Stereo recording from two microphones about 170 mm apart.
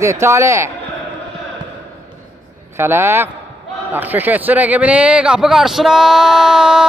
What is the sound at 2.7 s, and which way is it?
A man's voice, 15° right (ahead or behind).